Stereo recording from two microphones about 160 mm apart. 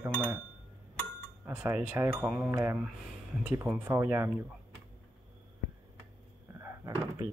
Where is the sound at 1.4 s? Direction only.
15° right (ahead or behind).